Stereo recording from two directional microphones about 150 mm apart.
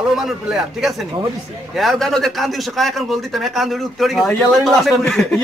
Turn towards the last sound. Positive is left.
turn(degrees=5)  # may be behind; listen again after turning